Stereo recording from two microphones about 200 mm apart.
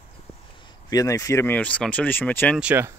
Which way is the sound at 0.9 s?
15° left (ahead or behind).